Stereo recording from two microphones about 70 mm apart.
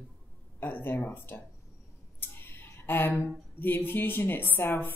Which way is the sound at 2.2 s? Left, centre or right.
Left.